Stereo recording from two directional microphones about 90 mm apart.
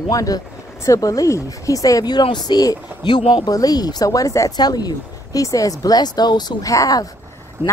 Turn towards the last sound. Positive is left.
turn(degrees=-30)  # may be behind; listen again after turning